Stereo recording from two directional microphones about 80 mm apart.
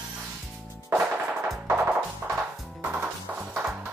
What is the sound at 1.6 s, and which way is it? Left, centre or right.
Music, centre.